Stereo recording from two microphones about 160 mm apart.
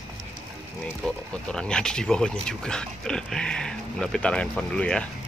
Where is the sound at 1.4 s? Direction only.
5° left (ahead or behind).